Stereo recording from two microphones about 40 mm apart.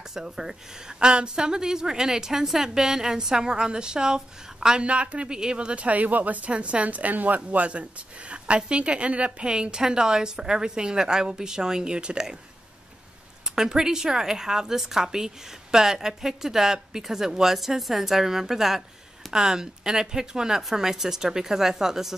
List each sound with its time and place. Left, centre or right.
0.1 s a woman's voice: centre
4.8 s a woman's voice: right
5.8 s a woman's voice: right
6.5 s a woman's voice: right
13.6 s a woman's voice: centre